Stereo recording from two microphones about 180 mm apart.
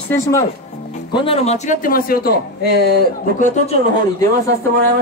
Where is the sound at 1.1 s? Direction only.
30° left (ahead or behind); by 3.0 s 65° left (ahead or behind).